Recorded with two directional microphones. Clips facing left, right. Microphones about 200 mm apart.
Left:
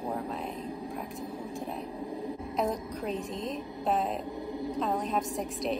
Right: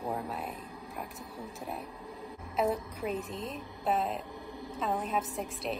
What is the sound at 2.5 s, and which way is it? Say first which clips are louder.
A woman's voice: right 2 dB; 5° right (ahead or behind).